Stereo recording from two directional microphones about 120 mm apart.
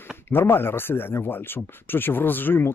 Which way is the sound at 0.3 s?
20° left (ahead or behind).